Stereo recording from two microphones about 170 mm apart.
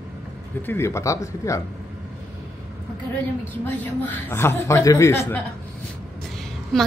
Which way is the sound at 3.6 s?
10° left (ahead or behind).